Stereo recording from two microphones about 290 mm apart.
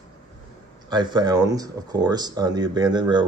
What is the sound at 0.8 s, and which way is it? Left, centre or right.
A man's voice, centre.